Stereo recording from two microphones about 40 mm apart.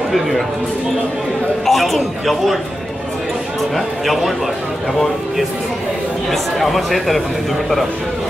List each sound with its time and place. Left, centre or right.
1.7 s a man's voice: centre
3.7 s a man's voice: centre
6.3 s a man's voice: centre